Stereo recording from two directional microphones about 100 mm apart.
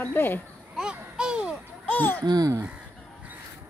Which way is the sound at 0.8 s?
10° right (ahead or behind).